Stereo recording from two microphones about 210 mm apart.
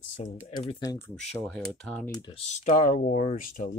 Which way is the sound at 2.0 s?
25° left (ahead or behind).